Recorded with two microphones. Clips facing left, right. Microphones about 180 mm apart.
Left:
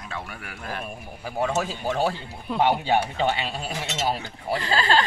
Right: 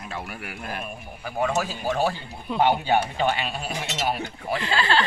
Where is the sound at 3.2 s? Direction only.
25° left (ahead or behind).